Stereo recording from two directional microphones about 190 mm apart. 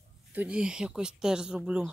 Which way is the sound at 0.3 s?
5° right (ahead or behind).